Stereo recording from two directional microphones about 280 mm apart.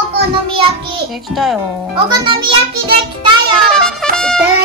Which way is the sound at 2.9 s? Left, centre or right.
Centre.